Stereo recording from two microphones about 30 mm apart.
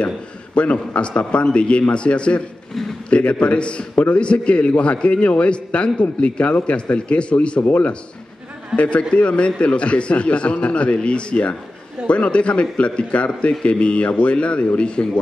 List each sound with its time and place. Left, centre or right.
0.6 s a man's voice: left
8.7 s a man's voice: left